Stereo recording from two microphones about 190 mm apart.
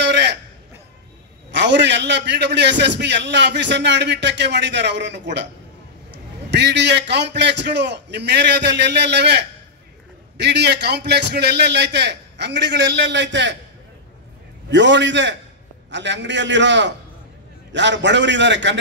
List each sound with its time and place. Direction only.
0.0 s a sound: 65° right (ahead or behind)
1.5 s a man's voice: 65° right (ahead or behind)
14.7 s a man's voice: 70° right (ahead or behind)